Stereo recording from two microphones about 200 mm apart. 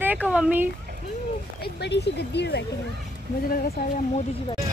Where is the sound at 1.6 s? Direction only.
55° left (ahead or behind).